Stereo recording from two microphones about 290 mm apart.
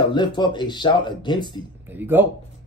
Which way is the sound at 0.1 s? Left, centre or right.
Centre.